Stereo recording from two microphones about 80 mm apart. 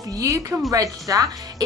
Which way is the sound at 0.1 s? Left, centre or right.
Right.